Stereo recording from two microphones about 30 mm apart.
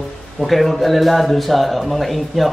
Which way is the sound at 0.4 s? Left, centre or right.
Centre.